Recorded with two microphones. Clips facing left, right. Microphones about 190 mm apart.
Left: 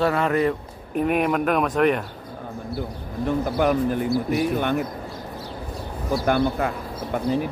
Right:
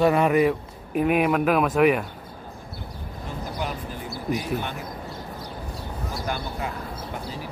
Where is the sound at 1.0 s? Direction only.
Centre (ahead or behind).